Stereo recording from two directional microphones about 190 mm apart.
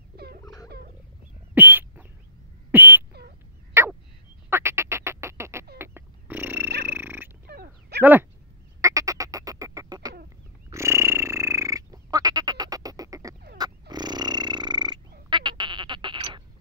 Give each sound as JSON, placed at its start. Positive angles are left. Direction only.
{"t": 0.1, "sound": "a sound", "side_deg": -55}
{"t": 1.5, "sound": "chicken", "side_deg": -10}
{"t": 2.7, "sound": "bird", "side_deg": -10}
{"t": 3.1, "sound": "duck", "side_deg": -60}
{"t": 3.8, "sound": "a sound", "side_deg": -15}
{"t": 4.5, "sound": "duck", "side_deg": -15}
{"t": 5.8, "sound": "a sound", "side_deg": -10}
{"t": 7.4, "sound": "a sound", "side_deg": -55}
{"t": 8.0, "sound": "speech", "side_deg": -10}
{"t": 8.8, "sound": "quack", "side_deg": -15}
{"t": 10.7, "sound": "frog", "side_deg": -15}
{"t": 13.6, "sound": "burping", "side_deg": -20}
{"t": 15.2, "sound": "sheep", "side_deg": -25}